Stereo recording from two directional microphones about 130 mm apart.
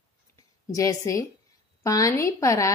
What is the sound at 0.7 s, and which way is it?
A woman's voice, 25° left (ahead or behind).